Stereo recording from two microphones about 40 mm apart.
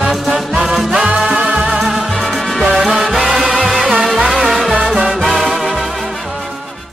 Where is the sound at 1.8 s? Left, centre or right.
Centre.